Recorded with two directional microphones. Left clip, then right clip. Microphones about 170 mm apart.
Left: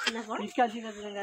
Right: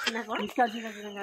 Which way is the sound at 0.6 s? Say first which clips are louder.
Right 1 dB; 20° right (ahead or behind).